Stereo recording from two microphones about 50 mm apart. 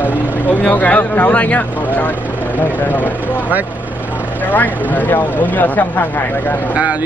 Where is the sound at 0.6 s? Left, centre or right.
Left.